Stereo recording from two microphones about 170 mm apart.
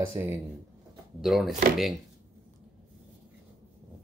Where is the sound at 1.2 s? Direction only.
Centre (ahead or behind).